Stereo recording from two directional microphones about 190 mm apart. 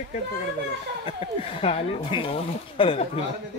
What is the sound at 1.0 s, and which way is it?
Speech, 30° left (ahead or behind).